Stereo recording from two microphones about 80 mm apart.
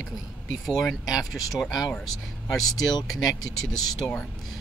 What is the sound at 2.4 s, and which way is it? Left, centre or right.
Speech, left.